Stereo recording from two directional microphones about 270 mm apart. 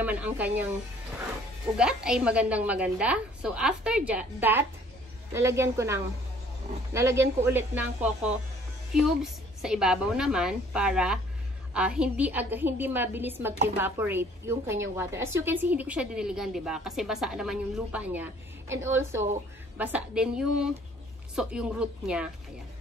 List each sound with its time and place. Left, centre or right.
0.0 s a woman's voice: centre
1.8 s a woman's voice: centre